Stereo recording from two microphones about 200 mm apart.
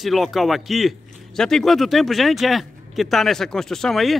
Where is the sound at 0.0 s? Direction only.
Centre (ahead or behind).